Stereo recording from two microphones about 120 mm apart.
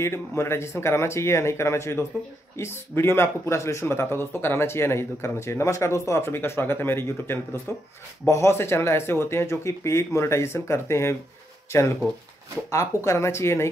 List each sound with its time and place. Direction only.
0.0 s speech: 20° left (ahead or behind)